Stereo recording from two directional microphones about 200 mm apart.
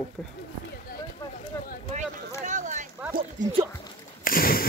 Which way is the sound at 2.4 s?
40° right (ahead or behind).